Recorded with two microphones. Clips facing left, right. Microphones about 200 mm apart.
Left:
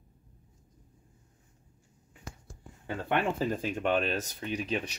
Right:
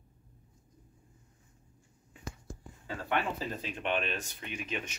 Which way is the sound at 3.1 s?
50° left (ahead or behind).